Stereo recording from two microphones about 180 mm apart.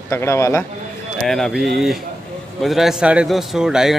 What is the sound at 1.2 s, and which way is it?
Speech, centre (ahead or behind).